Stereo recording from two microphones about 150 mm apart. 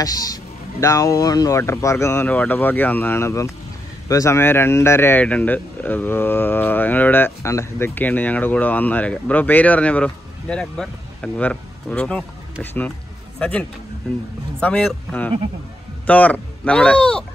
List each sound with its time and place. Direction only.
0.0 s speech: 25° left (ahead or behind); by 12.3 s 5° left (ahead or behind)
13.4 s a man's voice: 10° left (ahead or behind)